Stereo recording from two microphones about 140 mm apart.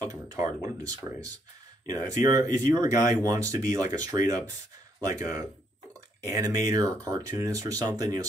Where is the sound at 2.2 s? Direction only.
25° right (ahead or behind).